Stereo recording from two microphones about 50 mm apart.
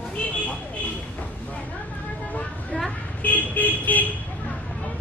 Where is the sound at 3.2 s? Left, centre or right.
Left.